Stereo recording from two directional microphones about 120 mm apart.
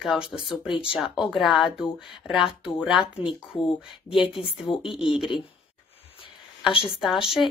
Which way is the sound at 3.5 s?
45° left (ahead or behind).